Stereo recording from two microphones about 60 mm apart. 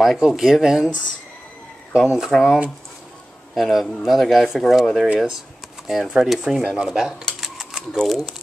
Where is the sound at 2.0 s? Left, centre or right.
Centre.